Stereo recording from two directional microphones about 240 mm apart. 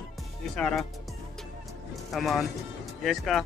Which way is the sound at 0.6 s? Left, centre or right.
Centre.